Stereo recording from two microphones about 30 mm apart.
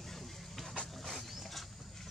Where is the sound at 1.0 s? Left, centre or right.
Centre.